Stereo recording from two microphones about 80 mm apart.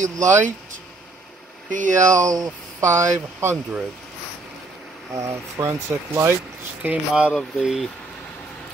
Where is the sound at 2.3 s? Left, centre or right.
Right.